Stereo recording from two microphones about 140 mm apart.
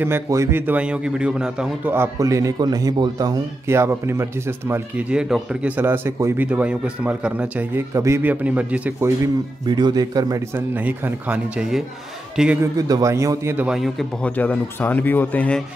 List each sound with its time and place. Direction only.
0.0 s speech: 20° right (ahead or behind)
2.0 s a man's voice: 25° right (ahead or behind)
5.1 s speech: 5° right (ahead or behind)
6.4 s speech: 10° right (ahead or behind)
7.9 s speech: 20° right (ahead or behind)
9.7 s a man's voice: 30° right (ahead or behind); by 12.5 s 5° right (ahead or behind)
12.7 s a man's voice: 25° right (ahead or behind)
13.7 s a man's voice: centre (ahead or behind)
14.3 s speech: 10° left (ahead or behind)